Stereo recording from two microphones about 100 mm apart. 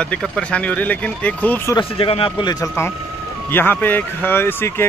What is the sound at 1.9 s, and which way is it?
Speech, 65° left (ahead or behind).